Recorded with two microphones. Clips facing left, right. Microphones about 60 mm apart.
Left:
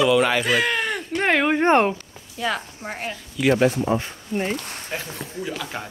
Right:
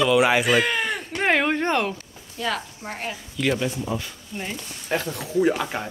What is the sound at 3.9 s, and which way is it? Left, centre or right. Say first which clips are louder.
Speech: left 6 dB; left.